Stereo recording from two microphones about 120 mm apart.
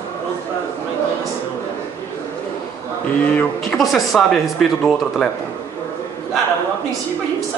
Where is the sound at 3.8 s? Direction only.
Centre (ahead or behind).